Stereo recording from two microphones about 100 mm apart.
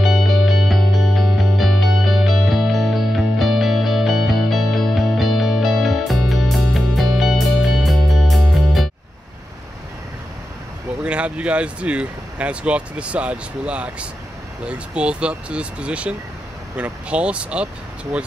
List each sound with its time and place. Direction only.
0.0 s music: centre (ahead or behind)
11.0 s speech: 10° right (ahead or behind)